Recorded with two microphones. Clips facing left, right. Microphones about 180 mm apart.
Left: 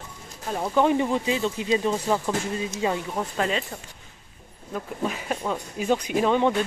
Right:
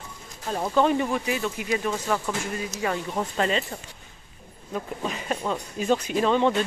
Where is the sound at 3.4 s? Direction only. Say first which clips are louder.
Right 1 dB; 5° left (ahead or behind).